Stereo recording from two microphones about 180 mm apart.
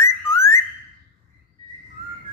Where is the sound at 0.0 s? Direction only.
15° left (ahead or behind).